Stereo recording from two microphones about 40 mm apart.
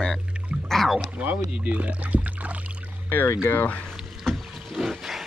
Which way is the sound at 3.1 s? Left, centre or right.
Left.